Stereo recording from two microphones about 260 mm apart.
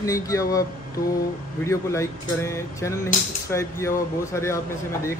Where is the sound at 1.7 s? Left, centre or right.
Centre.